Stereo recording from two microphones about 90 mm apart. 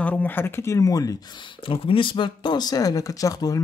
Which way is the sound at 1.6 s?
80° left.